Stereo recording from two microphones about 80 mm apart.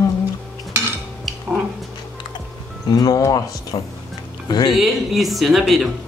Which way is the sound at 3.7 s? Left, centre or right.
Left.